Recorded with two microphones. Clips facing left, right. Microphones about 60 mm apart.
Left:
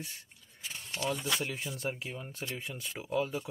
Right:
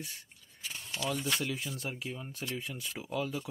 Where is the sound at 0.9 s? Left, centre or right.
Left.